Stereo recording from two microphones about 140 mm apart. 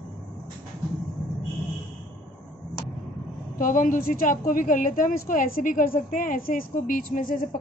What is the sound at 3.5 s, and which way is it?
A woman's voice, 75° left (ahead or behind).